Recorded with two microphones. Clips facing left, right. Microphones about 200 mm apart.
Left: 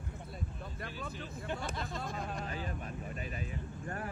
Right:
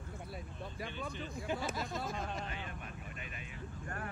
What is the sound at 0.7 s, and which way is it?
Speech, centre (ahead or behind).